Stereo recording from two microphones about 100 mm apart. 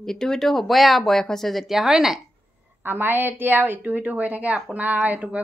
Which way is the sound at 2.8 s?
20° right (ahead or behind).